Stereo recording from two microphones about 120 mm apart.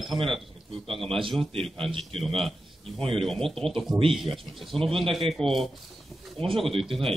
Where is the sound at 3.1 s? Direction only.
5° left (ahead or behind).